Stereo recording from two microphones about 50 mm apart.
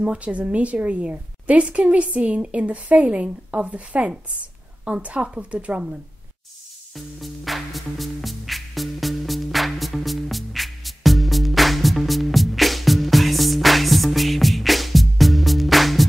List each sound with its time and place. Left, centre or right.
0.0 s a woman's voice: right
7.2 s music: centre